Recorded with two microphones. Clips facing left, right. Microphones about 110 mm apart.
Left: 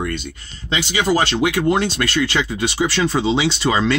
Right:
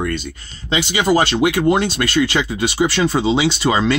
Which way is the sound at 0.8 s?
15° right (ahead or behind).